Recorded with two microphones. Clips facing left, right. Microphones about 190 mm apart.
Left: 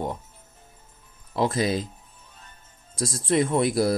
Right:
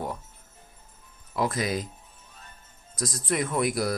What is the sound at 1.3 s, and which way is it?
Speech, 25° left (ahead or behind).